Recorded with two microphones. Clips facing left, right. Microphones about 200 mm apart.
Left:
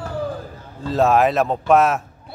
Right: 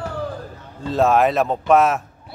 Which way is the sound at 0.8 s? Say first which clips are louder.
Even; centre (ahead or behind).